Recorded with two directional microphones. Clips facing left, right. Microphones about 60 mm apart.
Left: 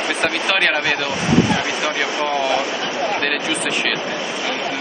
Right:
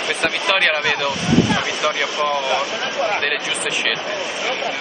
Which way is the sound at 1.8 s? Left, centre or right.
Left.